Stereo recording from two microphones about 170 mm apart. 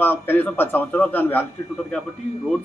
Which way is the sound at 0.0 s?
10° left (ahead or behind).